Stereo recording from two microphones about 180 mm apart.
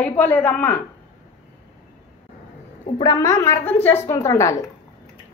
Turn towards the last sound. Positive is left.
turn(degrees=15)  # may be behind; listen again after turning